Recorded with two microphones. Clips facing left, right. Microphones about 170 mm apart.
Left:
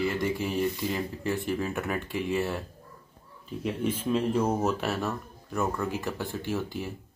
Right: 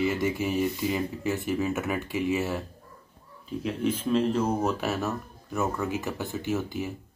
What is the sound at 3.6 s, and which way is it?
Speech, 5° left (ahead or behind).